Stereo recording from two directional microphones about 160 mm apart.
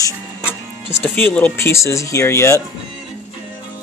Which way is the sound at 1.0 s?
10° left (ahead or behind).